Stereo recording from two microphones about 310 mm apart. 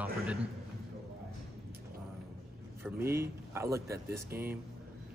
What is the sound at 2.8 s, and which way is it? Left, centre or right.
Speech, centre.